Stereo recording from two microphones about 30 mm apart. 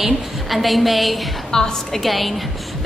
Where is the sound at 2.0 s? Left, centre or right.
Centre.